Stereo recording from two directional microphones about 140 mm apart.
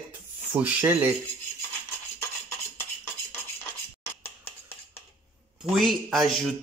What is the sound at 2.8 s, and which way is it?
Dishes, 20° left (ahead or behind).